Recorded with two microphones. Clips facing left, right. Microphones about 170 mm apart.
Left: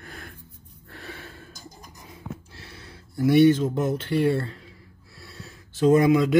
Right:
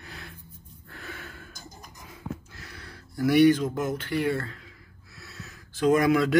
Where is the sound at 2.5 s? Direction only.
25° left (ahead or behind).